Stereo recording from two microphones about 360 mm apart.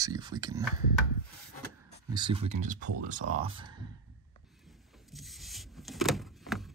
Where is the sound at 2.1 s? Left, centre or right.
Centre.